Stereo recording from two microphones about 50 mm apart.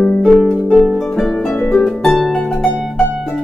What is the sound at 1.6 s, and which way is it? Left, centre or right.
Harp, centre.